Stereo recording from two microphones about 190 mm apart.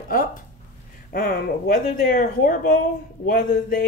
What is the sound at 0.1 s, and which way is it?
Speech, 45° left (ahead or behind).